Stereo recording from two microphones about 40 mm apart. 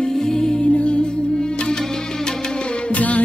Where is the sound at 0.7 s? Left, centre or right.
Left.